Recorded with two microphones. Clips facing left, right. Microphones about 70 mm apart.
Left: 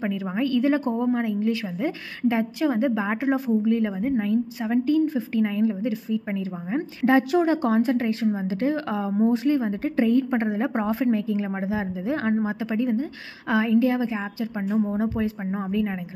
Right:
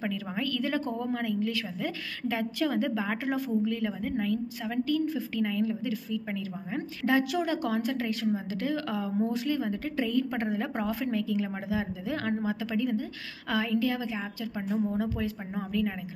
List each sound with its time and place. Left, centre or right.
0.0 s a woman's voice: left